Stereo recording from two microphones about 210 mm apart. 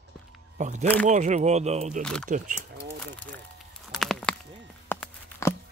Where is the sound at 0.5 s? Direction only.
35° right (ahead or behind).